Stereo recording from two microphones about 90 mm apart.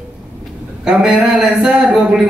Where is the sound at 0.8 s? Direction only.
10° right (ahead or behind).